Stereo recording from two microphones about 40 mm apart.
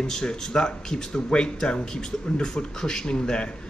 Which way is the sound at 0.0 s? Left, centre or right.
Centre.